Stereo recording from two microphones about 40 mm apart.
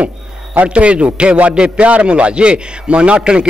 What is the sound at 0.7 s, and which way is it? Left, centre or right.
A man's voice, right.